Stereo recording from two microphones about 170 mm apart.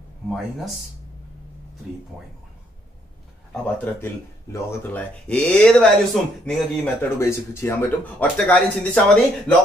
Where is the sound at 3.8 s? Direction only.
15° left (ahead or behind).